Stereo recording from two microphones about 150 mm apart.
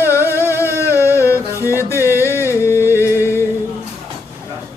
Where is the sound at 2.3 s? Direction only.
15° left (ahead or behind).